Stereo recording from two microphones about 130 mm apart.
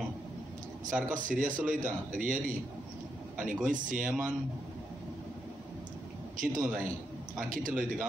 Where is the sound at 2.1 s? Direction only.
90° right.